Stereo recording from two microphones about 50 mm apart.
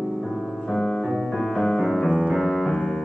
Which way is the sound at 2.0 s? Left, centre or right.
Centre.